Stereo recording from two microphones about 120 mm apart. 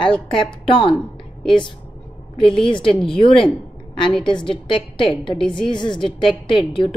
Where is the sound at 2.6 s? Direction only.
45° left (ahead or behind).